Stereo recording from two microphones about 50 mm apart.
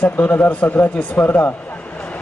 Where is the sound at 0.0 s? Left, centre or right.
Left.